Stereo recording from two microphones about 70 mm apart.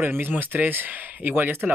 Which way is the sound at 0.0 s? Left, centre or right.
Right.